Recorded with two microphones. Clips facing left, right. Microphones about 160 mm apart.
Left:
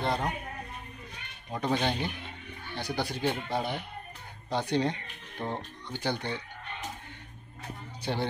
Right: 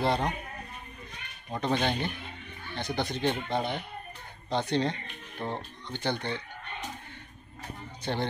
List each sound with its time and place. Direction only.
0.0 s a man's voice: centre (ahead or behind)
1.5 s speech: 10° left (ahead or behind)
8.0 s speech: 10° left (ahead or behind)